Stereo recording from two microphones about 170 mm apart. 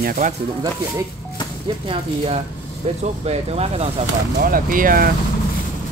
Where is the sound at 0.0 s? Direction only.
55° right (ahead or behind).